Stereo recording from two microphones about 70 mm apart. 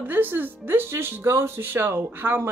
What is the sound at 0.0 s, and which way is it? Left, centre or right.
Speech, right.